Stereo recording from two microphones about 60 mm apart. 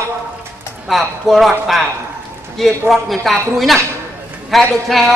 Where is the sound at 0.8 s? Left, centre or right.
Centre.